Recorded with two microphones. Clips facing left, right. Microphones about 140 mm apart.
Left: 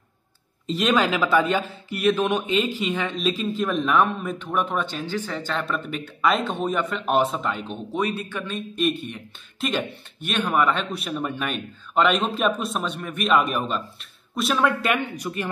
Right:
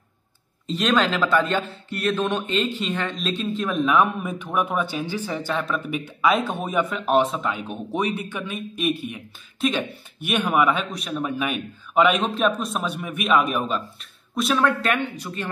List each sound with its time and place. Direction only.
0.7 s speech: 10° left (ahead or behind)
7.6 s speech: 15° right (ahead or behind)
10.2 s speech: 10° right (ahead or behind); by 15.0 s 5° left (ahead or behind)
15.1 s speech: 15° left (ahead or behind)